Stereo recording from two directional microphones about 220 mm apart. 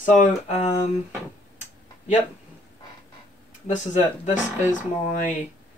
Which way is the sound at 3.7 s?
35° left (ahead or behind).